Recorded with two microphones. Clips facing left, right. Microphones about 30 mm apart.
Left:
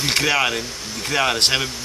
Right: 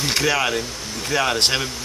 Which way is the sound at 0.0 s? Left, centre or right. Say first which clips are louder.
Left 1 dB; centre.